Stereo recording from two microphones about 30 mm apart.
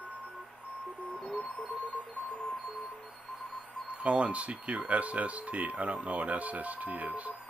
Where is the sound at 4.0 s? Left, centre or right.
Right.